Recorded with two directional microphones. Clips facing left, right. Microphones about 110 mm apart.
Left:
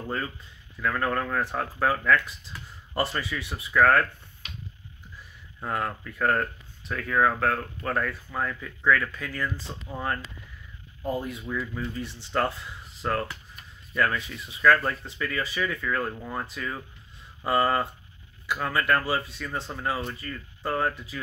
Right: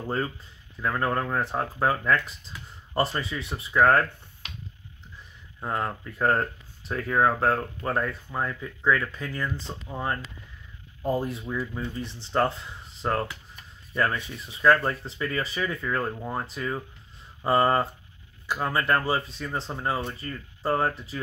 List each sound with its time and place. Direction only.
0.7 s speech: 20° right (ahead or behind)
5.6 s speech: 20° right (ahead or behind)
11.0 s speech: 30° right (ahead or behind)